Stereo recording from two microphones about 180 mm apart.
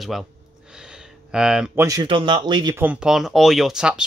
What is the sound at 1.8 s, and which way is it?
Speech, 20° right (ahead or behind).